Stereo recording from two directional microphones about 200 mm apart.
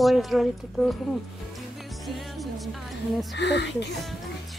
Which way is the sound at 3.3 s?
60° left (ahead or behind).